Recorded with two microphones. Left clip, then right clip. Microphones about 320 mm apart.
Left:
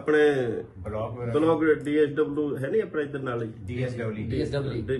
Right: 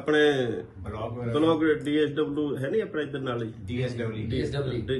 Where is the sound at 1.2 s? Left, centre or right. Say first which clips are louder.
Left 1 dB; centre.